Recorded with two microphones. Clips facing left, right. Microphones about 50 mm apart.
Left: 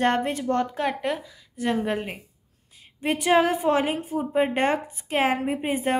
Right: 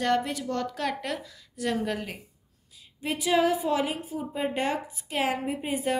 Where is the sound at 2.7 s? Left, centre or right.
Left.